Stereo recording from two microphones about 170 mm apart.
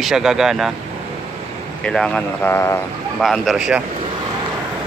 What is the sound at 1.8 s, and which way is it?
Speech, 5° left (ahead or behind).